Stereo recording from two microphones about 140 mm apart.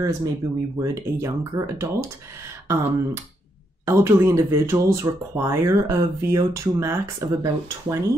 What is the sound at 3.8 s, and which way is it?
Speech, 20° right (ahead or behind).